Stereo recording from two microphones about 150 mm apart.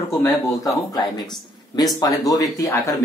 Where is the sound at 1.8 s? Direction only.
25° left (ahead or behind).